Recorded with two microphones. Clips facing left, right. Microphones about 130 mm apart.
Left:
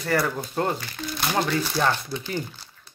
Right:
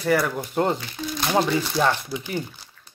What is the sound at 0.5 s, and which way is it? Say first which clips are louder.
Speech: right 4 dB; 20° right (ahead or behind).